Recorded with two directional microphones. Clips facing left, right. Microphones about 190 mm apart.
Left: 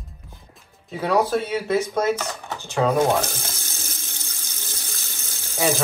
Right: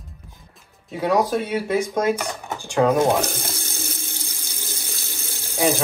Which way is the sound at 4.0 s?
30° right (ahead or behind).